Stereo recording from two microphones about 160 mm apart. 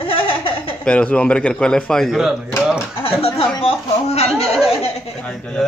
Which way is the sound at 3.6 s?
40° left (ahead or behind).